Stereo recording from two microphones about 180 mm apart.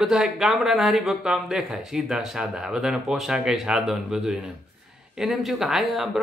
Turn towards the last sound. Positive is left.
turn(degrees=0)  # may be behind; listen again after turning